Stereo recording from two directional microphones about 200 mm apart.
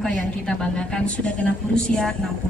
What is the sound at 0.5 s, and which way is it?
A woman's voice, 5° left (ahead or behind).